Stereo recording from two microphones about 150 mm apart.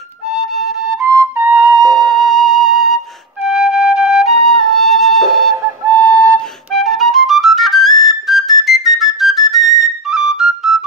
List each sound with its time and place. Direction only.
0.3 s flute: 5° right (ahead or behind)
1.0 s flute: 20° right (ahead or behind)
2.0 s music: centre (ahead or behind)
3.4 s flute: 5° right (ahead or behind)